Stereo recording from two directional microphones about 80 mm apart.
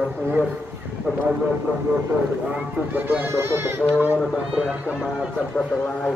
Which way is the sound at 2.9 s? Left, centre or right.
Right.